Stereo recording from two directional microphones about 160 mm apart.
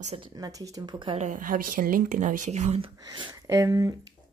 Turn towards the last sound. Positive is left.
turn(degrees=-20)  # may be behind; listen again after turning